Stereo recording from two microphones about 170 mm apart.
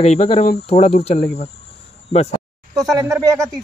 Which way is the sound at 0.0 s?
35° left (ahead or behind).